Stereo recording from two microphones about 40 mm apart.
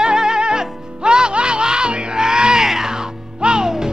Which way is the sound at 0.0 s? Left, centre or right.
Centre.